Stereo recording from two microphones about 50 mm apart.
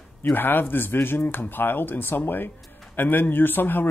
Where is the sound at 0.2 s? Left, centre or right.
Left.